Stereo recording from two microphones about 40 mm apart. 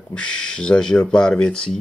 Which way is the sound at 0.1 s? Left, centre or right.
Left.